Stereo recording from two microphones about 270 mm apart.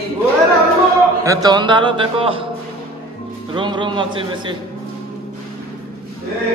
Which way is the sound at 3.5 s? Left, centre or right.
Centre.